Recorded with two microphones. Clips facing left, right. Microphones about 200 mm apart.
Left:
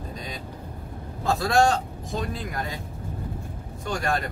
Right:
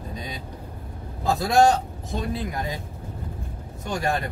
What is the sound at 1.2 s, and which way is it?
Speech, 20° right (ahead or behind).